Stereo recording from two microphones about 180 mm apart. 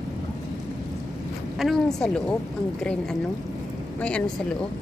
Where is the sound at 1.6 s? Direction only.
Centre (ahead or behind).